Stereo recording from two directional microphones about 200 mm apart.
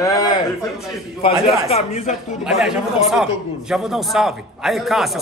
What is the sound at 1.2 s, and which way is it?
Speech, 30° left (ahead or behind).